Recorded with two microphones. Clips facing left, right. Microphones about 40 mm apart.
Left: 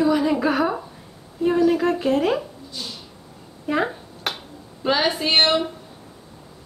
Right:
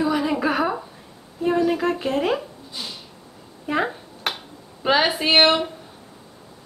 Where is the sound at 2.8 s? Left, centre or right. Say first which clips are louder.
Even; centre.